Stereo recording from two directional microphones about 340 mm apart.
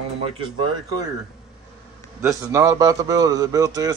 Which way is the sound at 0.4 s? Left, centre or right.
Centre.